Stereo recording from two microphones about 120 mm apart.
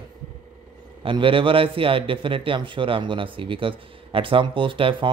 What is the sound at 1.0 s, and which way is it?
A man's voice, 45° right (ahead or behind).